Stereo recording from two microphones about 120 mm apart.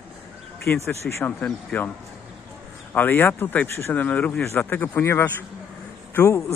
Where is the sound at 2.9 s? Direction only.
15° left (ahead or behind).